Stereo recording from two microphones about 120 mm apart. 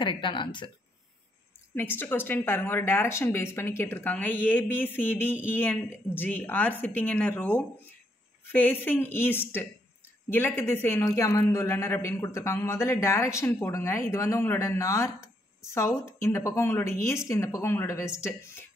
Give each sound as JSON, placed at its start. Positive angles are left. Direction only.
{"t": 0.0, "sound": "speech", "side_deg": 40}
{"t": 1.8, "sound": "a man's voice", "side_deg": 15}